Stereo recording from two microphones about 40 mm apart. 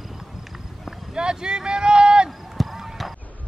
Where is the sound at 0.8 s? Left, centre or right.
Centre.